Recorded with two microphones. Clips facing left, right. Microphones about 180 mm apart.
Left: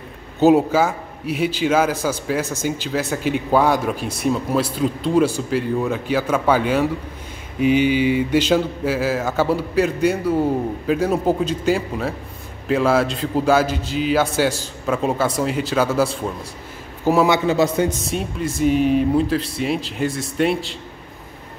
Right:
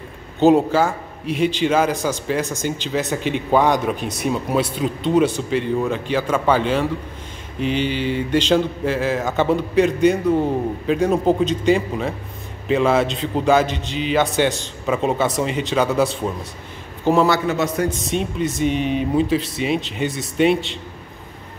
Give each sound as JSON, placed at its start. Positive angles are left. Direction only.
{"t": 0.4, "sound": "a man's voice", "side_deg": 5}
{"t": 17.3, "sound": "a man's voice", "side_deg": 25}
{"t": 18.0, "sound": "speech", "side_deg": 0}